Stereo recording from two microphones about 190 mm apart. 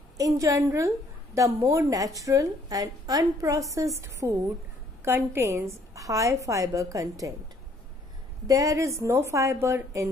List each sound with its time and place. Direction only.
0.2 s a woman's voice: 15° right (ahead or behind)
8.5 s a woman's voice: 15° right (ahead or behind)